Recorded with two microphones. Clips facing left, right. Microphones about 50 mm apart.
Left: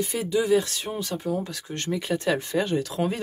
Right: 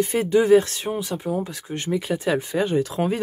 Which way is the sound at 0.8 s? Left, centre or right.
Centre.